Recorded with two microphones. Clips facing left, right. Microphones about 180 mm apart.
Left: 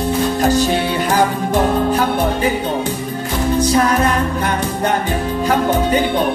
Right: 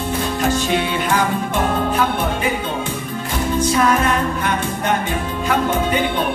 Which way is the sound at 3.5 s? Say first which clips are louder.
Left 1 dB; 35° left (ahead or behind).